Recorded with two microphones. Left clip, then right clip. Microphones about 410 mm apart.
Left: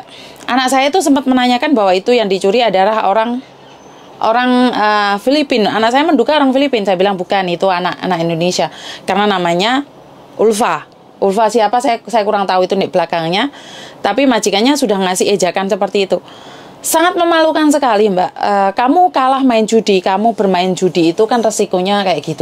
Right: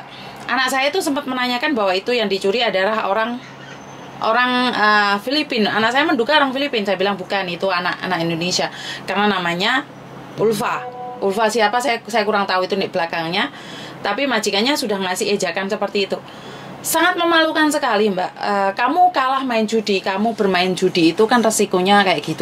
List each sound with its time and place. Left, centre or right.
0.5 s a woman's voice: left